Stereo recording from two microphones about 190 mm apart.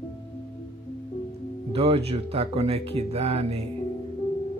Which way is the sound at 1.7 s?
30° right (ahead or behind).